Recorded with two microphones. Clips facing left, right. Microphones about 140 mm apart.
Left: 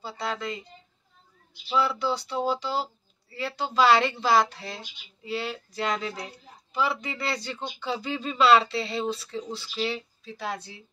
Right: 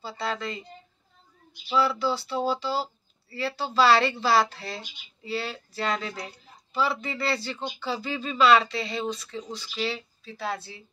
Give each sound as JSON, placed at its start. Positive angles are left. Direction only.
{"t": 0.0, "sound": "a woman's voice", "side_deg": 15}
{"t": 1.8, "sound": "speech", "side_deg": 20}
{"t": 9.8, "sound": "speech", "side_deg": 15}